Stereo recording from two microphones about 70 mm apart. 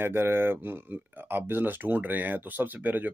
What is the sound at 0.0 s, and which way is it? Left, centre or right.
Speech, right.